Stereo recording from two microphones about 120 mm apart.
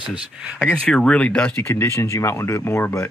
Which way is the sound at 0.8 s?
10° left (ahead or behind).